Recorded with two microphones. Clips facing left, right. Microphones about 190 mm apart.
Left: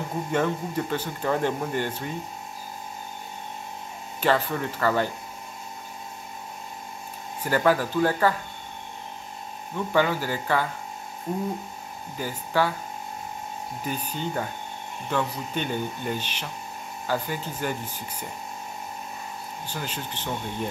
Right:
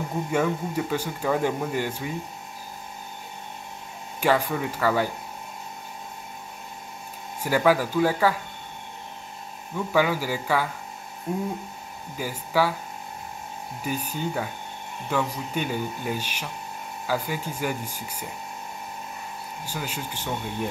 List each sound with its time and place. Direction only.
0.3 s speech: 10° right (ahead or behind)
4.2 s speech: 10° right (ahead or behind)
7.4 s speech: 10° right (ahead or behind)
9.8 s speech: 10° right (ahead or behind)
13.8 s speech: 10° right (ahead or behind)
19.6 s speech: 10° right (ahead or behind)